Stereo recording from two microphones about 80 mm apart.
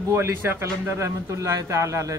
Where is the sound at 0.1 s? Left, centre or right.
Right.